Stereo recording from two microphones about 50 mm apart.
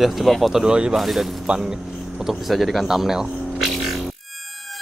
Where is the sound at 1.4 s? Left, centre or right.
Centre.